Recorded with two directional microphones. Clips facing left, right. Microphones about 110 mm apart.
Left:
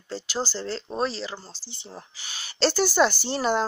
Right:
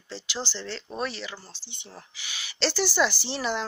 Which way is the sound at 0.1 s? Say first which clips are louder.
Left 5 dB; 45° left (ahead or behind).